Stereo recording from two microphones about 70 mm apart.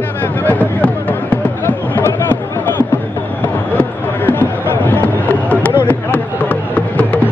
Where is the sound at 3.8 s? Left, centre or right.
Left.